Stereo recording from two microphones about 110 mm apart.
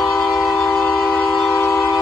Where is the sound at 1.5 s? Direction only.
30° left (ahead or behind).